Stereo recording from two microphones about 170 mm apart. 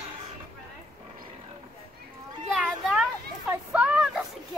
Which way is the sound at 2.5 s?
5° right (ahead or behind).